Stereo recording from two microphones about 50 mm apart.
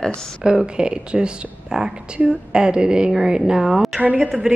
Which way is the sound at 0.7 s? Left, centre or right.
Centre.